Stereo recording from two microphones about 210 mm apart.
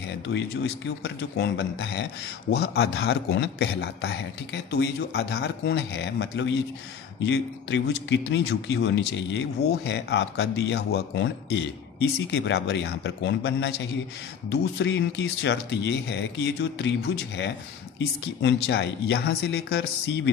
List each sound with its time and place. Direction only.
1.0 s a man's voice: 55° left (ahead or behind)